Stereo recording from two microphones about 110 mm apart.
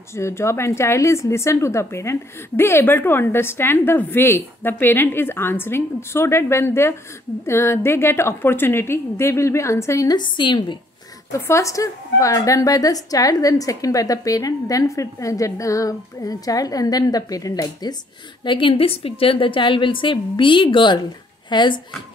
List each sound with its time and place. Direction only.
0.1 s speech: 25° left (ahead or behind)
10.1 s a woman's voice: 45° left (ahead or behind)
11.3 s a woman's voice: 25° left (ahead or behind)
18.4 s a woman's voice: 50° left (ahead or behind)